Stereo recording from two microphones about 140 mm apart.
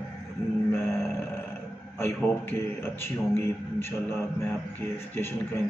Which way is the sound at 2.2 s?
15° left (ahead or behind).